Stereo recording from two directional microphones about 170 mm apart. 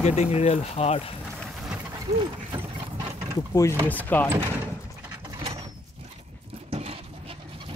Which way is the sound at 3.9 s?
10° left (ahead or behind).